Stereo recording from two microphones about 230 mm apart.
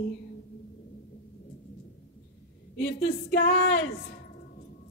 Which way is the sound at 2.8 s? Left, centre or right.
Left.